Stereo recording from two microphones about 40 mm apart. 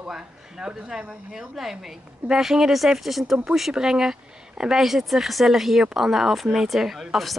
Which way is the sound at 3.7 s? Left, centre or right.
Centre.